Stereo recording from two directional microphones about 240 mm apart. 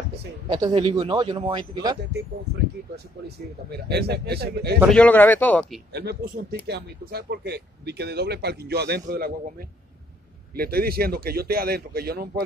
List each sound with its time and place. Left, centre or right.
0.5 s speech: centre
3.3 s speech: right
4.7 s speech: centre
6.7 s speech: right
10.5 s a man's voice: right